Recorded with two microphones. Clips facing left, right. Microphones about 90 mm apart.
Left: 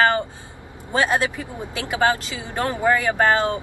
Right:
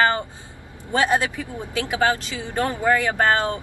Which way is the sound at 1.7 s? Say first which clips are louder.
Left 1 dB; 20° left (ahead or behind).